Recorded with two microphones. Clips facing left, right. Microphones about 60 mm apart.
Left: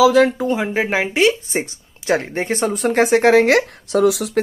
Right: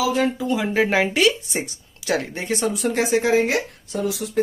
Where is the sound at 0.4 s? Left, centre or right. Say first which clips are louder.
Left 3 dB; left.